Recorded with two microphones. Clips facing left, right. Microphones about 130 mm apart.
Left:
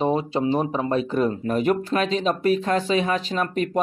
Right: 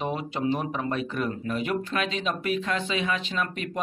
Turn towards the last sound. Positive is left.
turn(degrees=40)  # may be behind; listen again after turning